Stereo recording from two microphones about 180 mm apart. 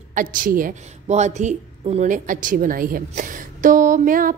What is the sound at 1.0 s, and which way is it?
A woman's voice, 40° right (ahead or behind).